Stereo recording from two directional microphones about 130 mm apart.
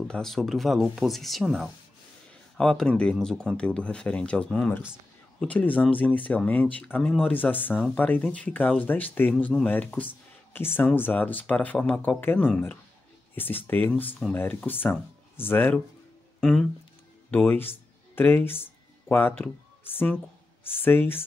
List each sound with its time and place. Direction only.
0.1 s speech: 5° left (ahead or behind)
16.3 s a sound: 5° left (ahead or behind)
17.3 s speech: 15° left (ahead or behind)